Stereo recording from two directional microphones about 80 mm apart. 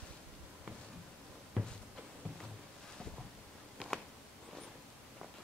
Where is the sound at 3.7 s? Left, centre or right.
Centre.